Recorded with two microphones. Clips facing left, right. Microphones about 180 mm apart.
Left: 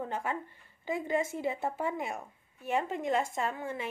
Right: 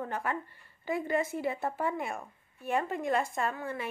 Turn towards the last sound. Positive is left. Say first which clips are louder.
# right 1 dB
turn(degrees=20)  # may be behind; listen again after turning